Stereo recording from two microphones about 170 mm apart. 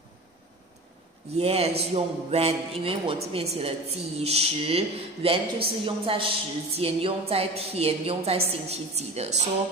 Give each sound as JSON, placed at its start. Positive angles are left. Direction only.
{"t": 1.3, "sound": "speech", "side_deg": -35}